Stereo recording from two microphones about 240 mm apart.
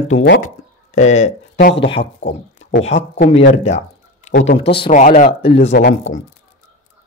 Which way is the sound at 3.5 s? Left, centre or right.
Left.